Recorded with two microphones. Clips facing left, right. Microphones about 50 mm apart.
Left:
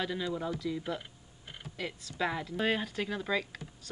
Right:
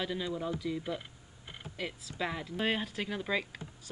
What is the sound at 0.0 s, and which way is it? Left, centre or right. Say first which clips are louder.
Speech: left 1 dB; centre.